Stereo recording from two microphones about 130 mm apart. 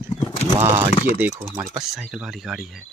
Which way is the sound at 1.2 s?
25° right (ahead or behind).